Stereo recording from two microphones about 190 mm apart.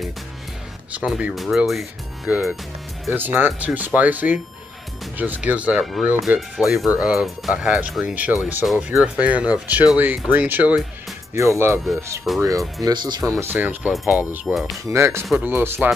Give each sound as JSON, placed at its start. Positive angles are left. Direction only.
{"t": 0.9, "sound": "speech", "side_deg": -5}
{"t": 13.4, "sound": "speech", "side_deg": -10}
{"t": 14.9, "sound": "speech", "side_deg": -15}